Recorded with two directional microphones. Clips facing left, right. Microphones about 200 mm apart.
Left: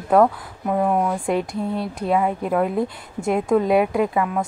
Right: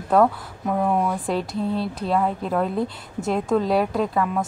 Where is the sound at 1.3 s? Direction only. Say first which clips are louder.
Left 2 dB; 15° left (ahead or behind).